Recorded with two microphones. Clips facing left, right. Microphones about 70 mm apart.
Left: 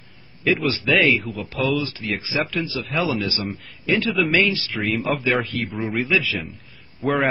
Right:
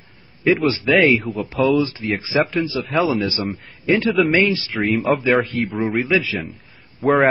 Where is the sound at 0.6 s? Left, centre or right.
Right.